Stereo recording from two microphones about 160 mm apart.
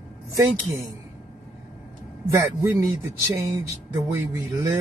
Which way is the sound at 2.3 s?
15° right (ahead or behind).